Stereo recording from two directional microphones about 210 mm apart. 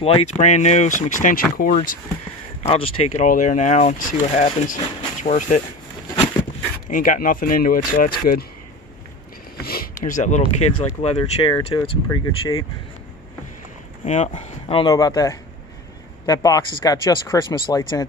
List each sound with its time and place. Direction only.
0.0 s speech: 30° left (ahead or behind)
2.7 s speech: 25° left (ahead or behind)
6.9 s speech: 40° left (ahead or behind)
9.6 s speech: 45° left (ahead or behind); by 12.6 s 20° left (ahead or behind)
14.0 s speech: 35° left (ahead or behind)